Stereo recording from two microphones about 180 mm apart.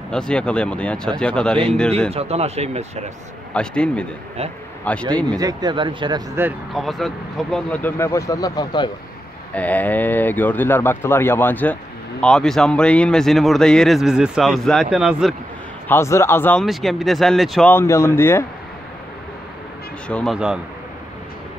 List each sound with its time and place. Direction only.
0.1 s speech: 5° left (ahead or behind)
2.1 s speech: 35° right (ahead or behind)
3.5 s speech: 5° left (ahead or behind)
5.4 s speech: 20° right (ahead or behind)
6.7 s speech: centre (ahead or behind); by 8.9 s 25° left (ahead or behind)
9.6 s speech: 10° left (ahead or behind)
15.9 s speech: 15° left (ahead or behind)
16.6 s speech: centre (ahead or behind)
20.1 s speech: 5° left (ahead or behind)